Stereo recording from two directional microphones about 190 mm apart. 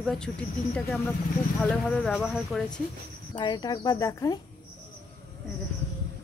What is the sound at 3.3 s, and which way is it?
Speech, 25° left (ahead or behind).